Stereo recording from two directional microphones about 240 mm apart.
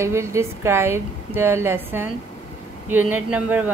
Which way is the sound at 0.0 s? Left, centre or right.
Centre.